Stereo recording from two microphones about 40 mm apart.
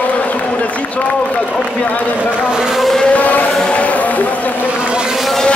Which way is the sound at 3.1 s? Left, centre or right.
Left.